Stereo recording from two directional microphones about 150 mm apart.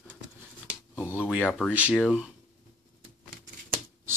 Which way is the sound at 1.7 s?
10° right (ahead or behind).